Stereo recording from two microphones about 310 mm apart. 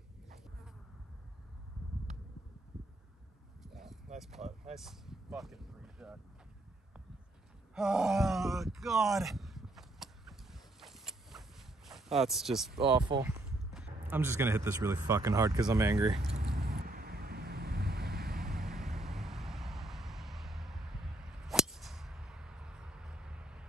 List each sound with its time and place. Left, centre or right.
3.6 s a sound: centre
4.2 s speech: centre
4.7 s vehicle: centre
7.7 s groan: centre
12.8 s speech: centre
16.4 s vehicle: right
18.4 s vehicle: centre